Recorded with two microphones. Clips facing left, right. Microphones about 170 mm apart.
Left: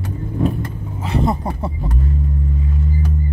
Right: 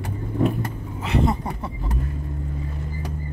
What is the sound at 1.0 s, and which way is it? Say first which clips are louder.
Speech: left 2 dB; 35° left (ahead or behind).